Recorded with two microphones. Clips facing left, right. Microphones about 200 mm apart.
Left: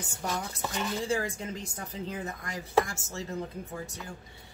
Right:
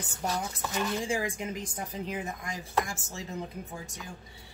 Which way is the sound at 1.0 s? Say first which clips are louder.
Even; 15° right (ahead or behind).